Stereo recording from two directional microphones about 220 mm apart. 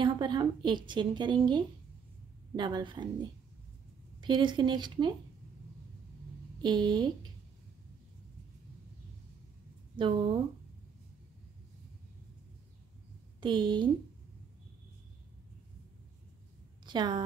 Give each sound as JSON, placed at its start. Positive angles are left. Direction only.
{"t": 0.0, "sound": "a woman's voice", "side_deg": -20}
{"t": 6.6, "sound": "a woman's voice", "side_deg": -20}
{"t": 9.9, "sound": "a woman's voice", "side_deg": -25}
{"t": 13.4, "sound": "a woman's voice", "side_deg": -20}
{"t": 16.8, "sound": "a woman's voice", "side_deg": -20}